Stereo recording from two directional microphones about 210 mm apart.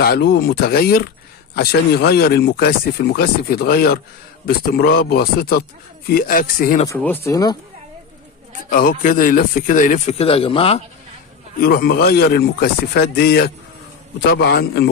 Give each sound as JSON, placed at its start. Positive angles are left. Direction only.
{"t": 0.0, "sound": "speech", "side_deg": 50}
{"t": 7.0, "sound": "speech", "side_deg": 10}
{"t": 8.6, "sound": "speech", "side_deg": 40}
{"t": 11.6, "sound": "speech", "side_deg": 45}